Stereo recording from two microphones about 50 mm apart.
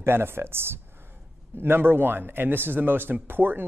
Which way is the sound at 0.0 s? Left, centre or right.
Right.